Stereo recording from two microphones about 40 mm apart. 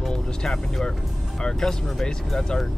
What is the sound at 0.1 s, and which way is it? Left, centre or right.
Vehicle, centre.